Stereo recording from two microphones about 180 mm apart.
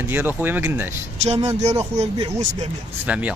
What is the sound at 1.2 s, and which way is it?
Speech, 35° right (ahead or behind).